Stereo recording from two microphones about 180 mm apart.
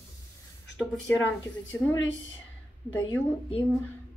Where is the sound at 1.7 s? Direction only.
10° left (ahead or behind).